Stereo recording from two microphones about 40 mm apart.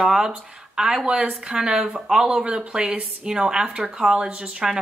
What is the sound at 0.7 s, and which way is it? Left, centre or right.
Speech, centre.